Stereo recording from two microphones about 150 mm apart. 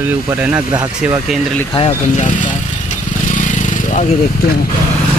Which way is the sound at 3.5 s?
55° left (ahead or behind).